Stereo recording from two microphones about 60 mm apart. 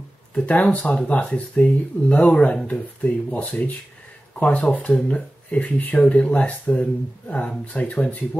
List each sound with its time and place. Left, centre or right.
0.3 s speech: left